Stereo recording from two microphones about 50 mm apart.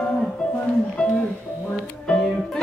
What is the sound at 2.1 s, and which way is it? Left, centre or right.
Music, left.